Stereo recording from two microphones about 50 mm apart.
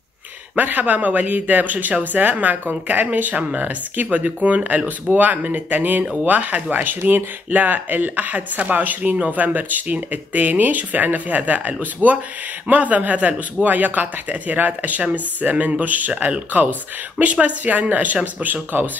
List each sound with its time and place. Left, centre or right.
0.6 s speech: right